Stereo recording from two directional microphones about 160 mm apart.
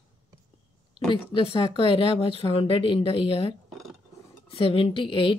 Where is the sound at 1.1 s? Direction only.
35° left (ahead or behind).